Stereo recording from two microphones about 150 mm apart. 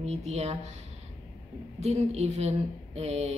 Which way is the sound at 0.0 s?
45° right (ahead or behind).